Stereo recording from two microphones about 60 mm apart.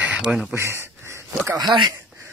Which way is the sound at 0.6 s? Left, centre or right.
Right.